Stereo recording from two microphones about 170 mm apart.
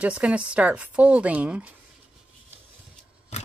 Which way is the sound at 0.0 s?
5° right (ahead or behind).